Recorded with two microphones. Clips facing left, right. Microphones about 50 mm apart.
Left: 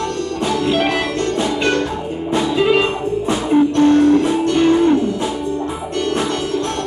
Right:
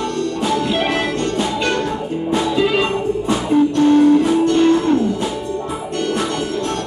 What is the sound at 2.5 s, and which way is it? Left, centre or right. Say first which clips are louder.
Music: left 4 dB; centre.